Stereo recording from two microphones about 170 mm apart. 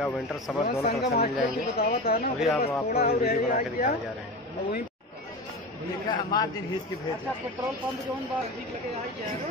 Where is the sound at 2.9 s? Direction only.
65° left (ahead or behind).